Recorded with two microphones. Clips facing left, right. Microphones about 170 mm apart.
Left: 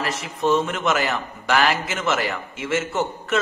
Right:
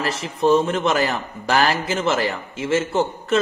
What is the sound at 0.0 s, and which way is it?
A man's voice, 30° right (ahead or behind).